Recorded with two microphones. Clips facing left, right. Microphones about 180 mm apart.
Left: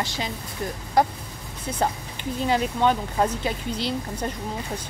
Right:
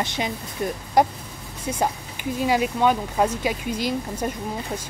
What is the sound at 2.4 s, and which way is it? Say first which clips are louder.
Speech: right 1 dB; 10° right (ahead or behind).